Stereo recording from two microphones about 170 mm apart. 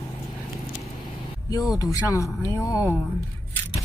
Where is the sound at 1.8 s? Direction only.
20° left (ahead or behind).